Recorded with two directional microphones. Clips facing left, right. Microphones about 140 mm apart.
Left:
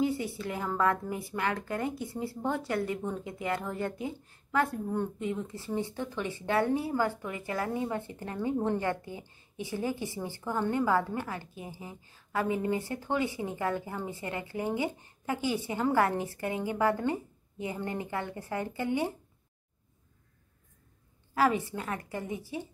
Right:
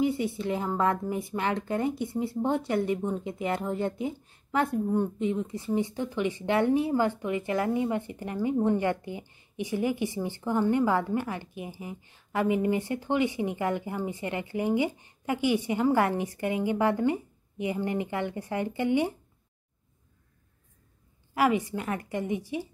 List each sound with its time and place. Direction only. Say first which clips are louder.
0.0 s speech: right 3 dB; 20° right (ahead or behind)
21.4 s speech: right 2 dB; 15° right (ahead or behind)